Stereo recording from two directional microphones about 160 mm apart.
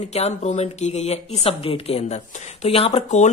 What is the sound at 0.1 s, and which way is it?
Speech, 45° left (ahead or behind).